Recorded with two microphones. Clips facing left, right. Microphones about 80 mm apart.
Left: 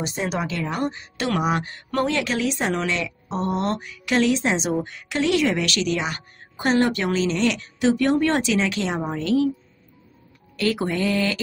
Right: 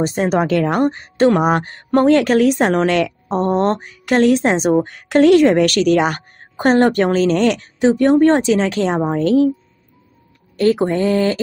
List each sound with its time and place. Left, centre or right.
0.0 s speech: right
7.8 s speech: right
10.6 s speech: right